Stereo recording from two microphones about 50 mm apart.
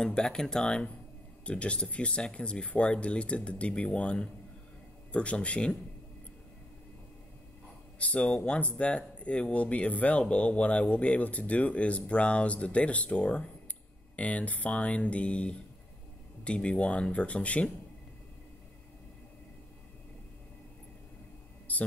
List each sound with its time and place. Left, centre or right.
0.0 s speech: centre
8.0 s speech: left
21.7 s a sound: left